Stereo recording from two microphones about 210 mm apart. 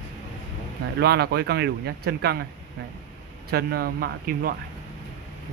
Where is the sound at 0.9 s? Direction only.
50° right (ahead or behind).